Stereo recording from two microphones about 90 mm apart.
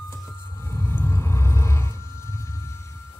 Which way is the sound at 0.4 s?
30° left (ahead or behind).